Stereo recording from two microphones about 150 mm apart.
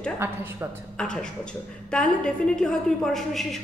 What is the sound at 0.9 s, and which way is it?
A woman's voice, 5° left (ahead or behind).